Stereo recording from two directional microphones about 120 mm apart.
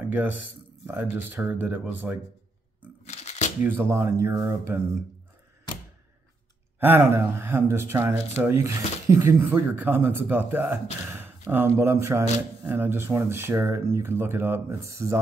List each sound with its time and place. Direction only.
0.0 s speech: 15° right (ahead or behind)
3.1 s shuffling cards: 70° left (ahead or behind)
3.6 s speech: 20° right (ahead or behind)
6.8 s speech: 20° right (ahead or behind)